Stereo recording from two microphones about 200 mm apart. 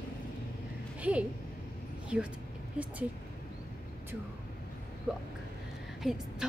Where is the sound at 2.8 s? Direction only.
5° right (ahead or behind).